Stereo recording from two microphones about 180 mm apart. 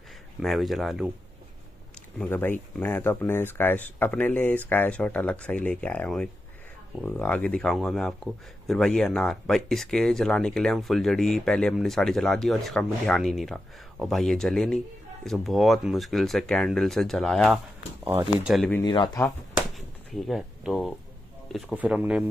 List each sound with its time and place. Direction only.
0.4 s speech: centre (ahead or behind)
2.1 s speech: 10° left (ahead or behind)
18.0 s speech: 10° right (ahead or behind)
18.5 s speech: centre (ahead or behind)
18.8 s speech: 25° left (ahead or behind)
19.7 s drawer open or close: centre (ahead or behind)
21.5 s speech: centre (ahead or behind)